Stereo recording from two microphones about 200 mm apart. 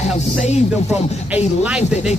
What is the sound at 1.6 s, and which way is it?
Speech, 5° right (ahead or behind).